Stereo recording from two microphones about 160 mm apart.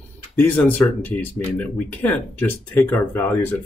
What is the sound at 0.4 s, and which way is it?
Speech, 10° left (ahead or behind).